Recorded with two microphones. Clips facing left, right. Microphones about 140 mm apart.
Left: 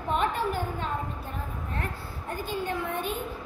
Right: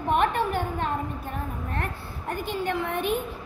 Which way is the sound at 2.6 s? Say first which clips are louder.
Right 5 dB; 70° right (ahead or behind).